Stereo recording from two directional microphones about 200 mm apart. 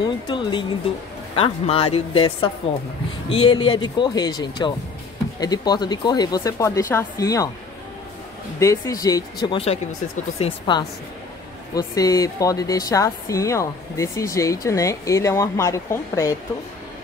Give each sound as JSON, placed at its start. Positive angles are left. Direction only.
{"t": 0.0, "sound": "speech", "side_deg": 25}
{"t": 8.5, "sound": "speech", "side_deg": 15}